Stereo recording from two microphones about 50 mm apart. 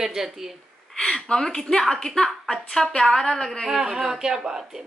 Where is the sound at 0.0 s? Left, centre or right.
Centre.